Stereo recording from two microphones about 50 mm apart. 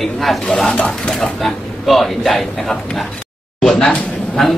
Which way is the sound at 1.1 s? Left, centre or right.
Centre.